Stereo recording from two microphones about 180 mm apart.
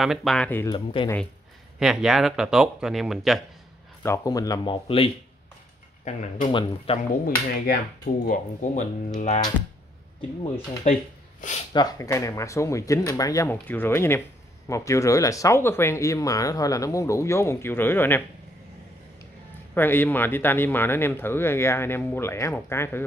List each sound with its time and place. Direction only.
0.0 s speech: centre (ahead or behind)
0.7 s speech: 30° left (ahead or behind)
1.8 s speech: 5° right (ahead or behind)
4.0 s speech: 15° left (ahead or behind)
4.8 s speech: 30° left (ahead or behind)
7.0 s speech: 55° left (ahead or behind)
8.3 s speech: 40° left (ahead or behind)
10.9 s speech: 40° left (ahead or behind)
11.7 s speech: 20° left (ahead or behind)
19.7 s speech: 10° left (ahead or behind)